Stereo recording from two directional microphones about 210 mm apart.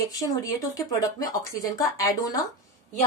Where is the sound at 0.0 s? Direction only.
15° left (ahead or behind).